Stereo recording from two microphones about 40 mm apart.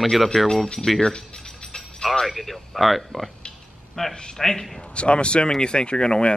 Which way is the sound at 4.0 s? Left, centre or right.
Centre.